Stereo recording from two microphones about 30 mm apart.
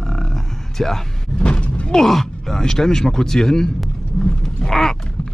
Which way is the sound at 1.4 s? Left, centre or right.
Left.